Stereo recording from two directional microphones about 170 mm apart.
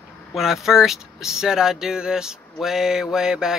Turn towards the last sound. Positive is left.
turn(degrees=-5)  # may be behind; listen again after turning